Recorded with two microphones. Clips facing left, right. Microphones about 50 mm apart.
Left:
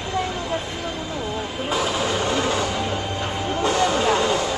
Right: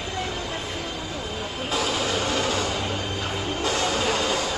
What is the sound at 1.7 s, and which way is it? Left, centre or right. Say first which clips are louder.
Music: left 3 dB; centre.